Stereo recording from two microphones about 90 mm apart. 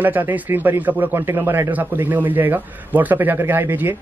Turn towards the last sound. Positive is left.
turn(degrees=-25)  # may be behind; listen again after turning